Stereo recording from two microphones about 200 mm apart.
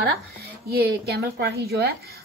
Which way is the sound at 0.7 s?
55° right (ahead or behind).